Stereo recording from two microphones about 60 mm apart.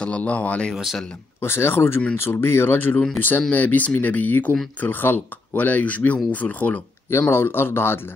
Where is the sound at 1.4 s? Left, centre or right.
Left.